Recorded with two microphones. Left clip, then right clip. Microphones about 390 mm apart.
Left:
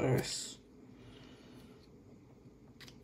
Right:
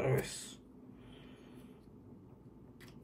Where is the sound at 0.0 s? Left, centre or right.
Left.